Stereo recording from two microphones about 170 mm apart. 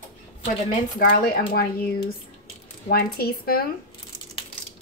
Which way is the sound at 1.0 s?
60° left (ahead or behind).